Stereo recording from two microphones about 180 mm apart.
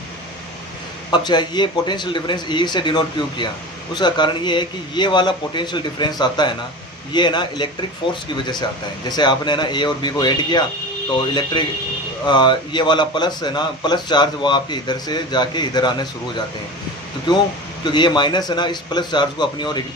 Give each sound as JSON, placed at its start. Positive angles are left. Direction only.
{"t": 1.1, "sound": "a man's voice", "side_deg": 25}
{"t": 12.3, "sound": "a man's voice", "side_deg": 25}
{"t": 17.3, "sound": "a man's voice", "side_deg": 25}